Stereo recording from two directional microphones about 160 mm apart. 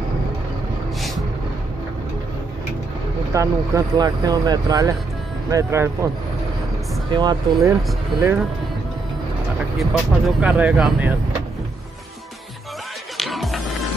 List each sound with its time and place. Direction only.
3.3 s speech: 20° right (ahead or behind)
7.1 s speech: 25° right (ahead or behind)
9.8 s speech: 5° right (ahead or behind)
13.2 s music: centre (ahead or behind)